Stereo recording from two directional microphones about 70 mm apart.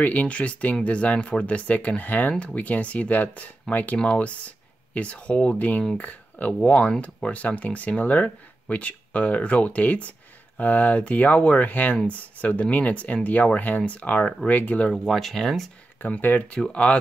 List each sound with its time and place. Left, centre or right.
0.0 s speech: left
15.0 s speech: centre
16.0 s speech: left